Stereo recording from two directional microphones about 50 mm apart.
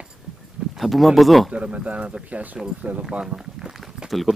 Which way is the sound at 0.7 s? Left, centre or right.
Centre.